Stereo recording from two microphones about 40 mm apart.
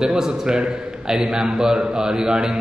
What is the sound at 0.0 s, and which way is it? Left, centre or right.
Speech, centre.